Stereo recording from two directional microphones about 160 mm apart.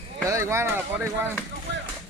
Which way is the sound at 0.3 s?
15° right (ahead or behind).